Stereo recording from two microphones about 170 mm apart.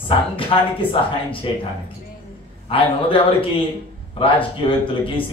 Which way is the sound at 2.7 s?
30° left (ahead or behind).